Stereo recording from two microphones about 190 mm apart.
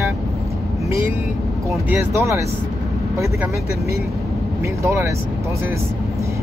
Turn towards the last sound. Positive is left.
turn(degrees=-15)  # may be behind; listen again after turning